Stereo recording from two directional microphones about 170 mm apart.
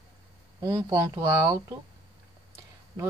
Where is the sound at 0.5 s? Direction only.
25° right (ahead or behind).